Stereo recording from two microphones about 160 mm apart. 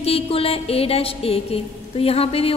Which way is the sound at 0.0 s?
35° left (ahead or behind).